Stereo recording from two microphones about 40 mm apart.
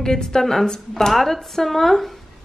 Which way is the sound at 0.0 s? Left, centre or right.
Centre.